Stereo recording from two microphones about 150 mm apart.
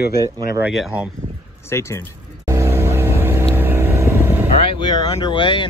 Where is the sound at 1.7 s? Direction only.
20° left (ahead or behind).